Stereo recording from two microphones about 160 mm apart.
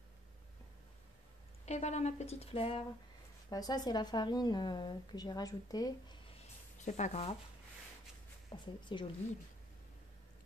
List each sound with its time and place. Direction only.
1.7 s a woman's voice: 45° left (ahead or behind)
3.4 s a woman's voice: 25° left (ahead or behind)
6.3 s a sound: 45° left (ahead or behind)
8.5 s speech: 30° left (ahead or behind)